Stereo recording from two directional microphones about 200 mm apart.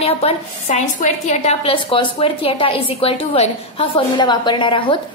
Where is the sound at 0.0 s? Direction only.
30° left (ahead or behind).